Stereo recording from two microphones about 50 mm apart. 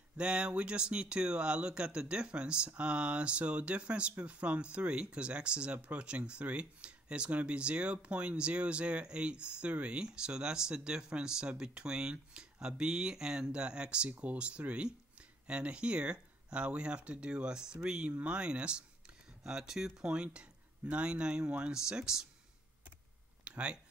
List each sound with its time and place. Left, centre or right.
0.2 s speech: right
23.4 s speech: right